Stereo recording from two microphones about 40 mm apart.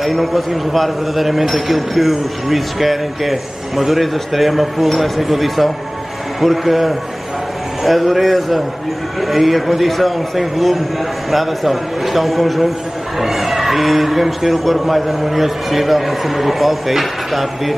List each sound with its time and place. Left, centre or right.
0.0 s a man's voice: centre